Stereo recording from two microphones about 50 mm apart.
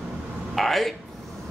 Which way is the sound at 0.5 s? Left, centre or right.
Centre.